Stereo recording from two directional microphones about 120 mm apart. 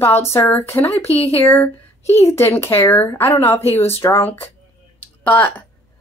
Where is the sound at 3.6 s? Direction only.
55° left (ahead or behind).